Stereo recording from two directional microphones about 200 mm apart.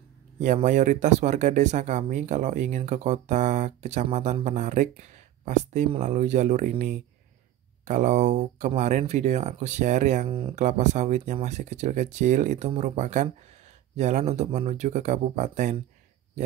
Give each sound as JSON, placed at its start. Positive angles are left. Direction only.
{"t": 0.4, "sound": "speech", "side_deg": -40}